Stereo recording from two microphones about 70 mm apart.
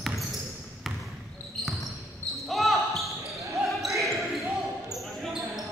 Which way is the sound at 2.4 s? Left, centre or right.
Centre.